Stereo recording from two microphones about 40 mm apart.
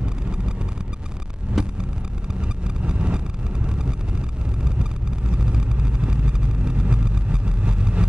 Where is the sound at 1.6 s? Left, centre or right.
Centre.